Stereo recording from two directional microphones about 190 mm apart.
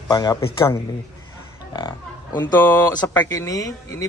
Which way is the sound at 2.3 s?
10° left (ahead or behind).